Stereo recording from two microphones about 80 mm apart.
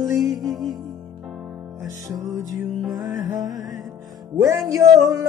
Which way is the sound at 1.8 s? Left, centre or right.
Right.